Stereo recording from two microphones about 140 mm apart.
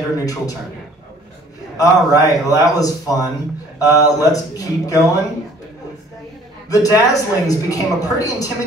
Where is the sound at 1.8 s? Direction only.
25° left (ahead or behind).